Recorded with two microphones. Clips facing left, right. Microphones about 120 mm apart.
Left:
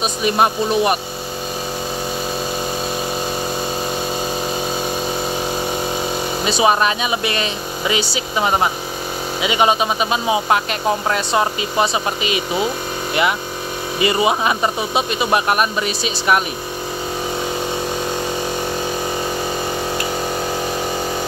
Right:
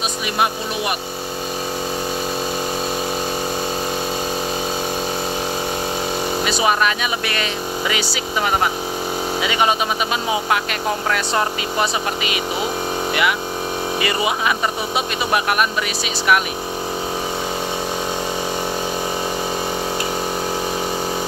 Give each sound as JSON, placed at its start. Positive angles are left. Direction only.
{"t": 0.2, "sound": "speech", "side_deg": 35}
{"t": 6.4, "sound": "speech", "side_deg": 25}
{"t": 11.1, "sound": "speech", "side_deg": 25}
{"t": 14.0, "sound": "speech", "side_deg": 30}